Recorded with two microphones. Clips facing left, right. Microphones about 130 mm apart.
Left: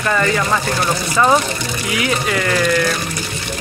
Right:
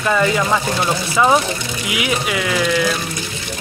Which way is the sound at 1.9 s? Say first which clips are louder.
Left 1 dB; 10° right (ahead or behind).